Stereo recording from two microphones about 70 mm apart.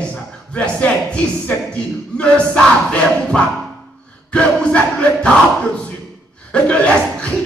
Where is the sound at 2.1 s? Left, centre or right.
Centre.